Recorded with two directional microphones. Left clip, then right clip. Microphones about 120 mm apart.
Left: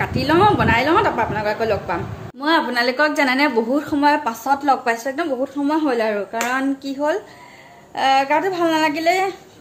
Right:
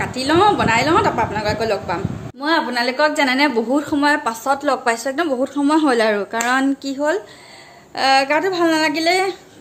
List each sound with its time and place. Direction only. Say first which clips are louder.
0.0 s a woman's voice: right 1 dB; 5° right (ahead or behind)
2.4 s a woman's voice: left 1 dB; 10° left (ahead or behind); by 5.3 s 25° right (ahead or behind)
5.4 s a woman's voice: right 5 dB; 35° right (ahead or behind)
6.8 s a woman's voice: right 1 dB; 20° right (ahead or behind)